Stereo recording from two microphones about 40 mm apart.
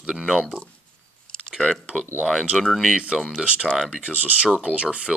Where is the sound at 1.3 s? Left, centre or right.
Centre.